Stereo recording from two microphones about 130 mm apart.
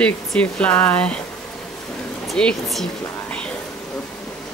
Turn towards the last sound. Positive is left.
turn(degrees=10)  # may be behind; listen again after turning